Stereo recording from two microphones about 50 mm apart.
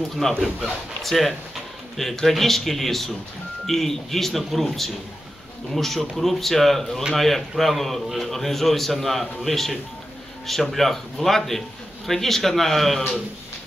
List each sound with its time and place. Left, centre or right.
0.2 s a man's voice: centre